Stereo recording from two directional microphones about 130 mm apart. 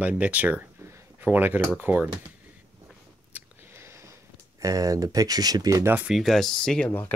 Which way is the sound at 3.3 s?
20° right (ahead or behind).